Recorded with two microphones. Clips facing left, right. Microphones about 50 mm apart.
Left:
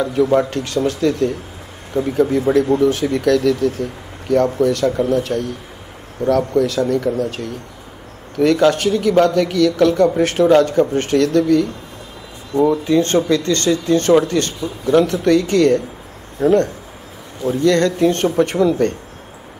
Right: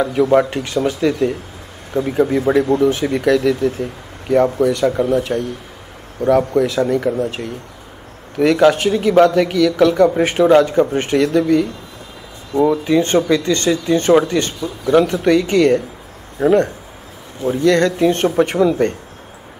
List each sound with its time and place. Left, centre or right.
0.0 s speech: right
10.0 s speech: centre